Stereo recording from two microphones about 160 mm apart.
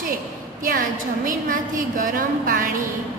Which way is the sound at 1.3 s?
60° right (ahead or behind).